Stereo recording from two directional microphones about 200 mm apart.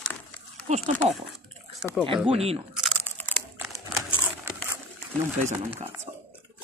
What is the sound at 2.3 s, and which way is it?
Speech, 30° right (ahead or behind).